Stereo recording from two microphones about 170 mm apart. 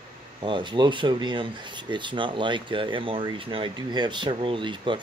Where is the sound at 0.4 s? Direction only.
30° right (ahead or behind).